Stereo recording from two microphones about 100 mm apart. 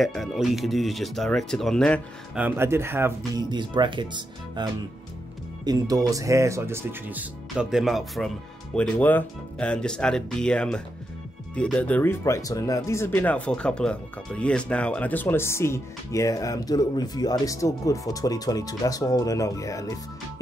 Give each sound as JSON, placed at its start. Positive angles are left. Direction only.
{"t": 0.0, "sound": "speech", "side_deg": 0}
{"t": 2.5, "sound": "speech", "side_deg": -25}
{"t": 3.3, "sound": "speech", "side_deg": -50}
{"t": 5.7, "sound": "speech", "side_deg": -40}
{"t": 7.7, "sound": "speech", "side_deg": 0}
{"t": 8.7, "sound": "speech", "side_deg": 15}
{"t": 13.1, "sound": "speech", "side_deg": 15}